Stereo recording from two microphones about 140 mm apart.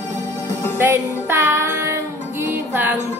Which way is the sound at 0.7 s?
15° right (ahead or behind).